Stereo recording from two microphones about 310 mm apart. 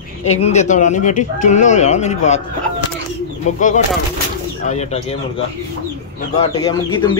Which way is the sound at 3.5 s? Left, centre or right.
Left.